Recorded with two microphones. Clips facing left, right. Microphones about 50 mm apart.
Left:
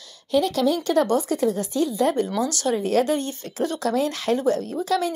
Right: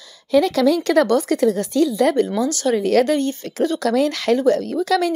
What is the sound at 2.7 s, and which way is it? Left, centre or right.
Speech, right.